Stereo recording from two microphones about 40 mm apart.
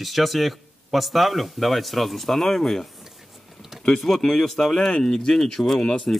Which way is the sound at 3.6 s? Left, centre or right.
Centre.